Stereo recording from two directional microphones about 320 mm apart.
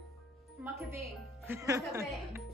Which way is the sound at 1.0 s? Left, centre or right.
Centre.